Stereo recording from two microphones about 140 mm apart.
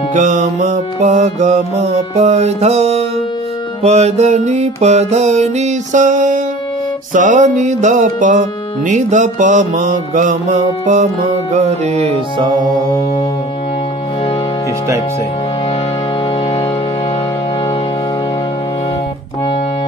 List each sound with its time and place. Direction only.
0.1 s music: 55° right (ahead or behind)
12.4 s music: 30° right (ahead or behind)